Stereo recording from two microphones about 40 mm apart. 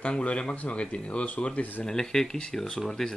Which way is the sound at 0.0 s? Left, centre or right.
Left.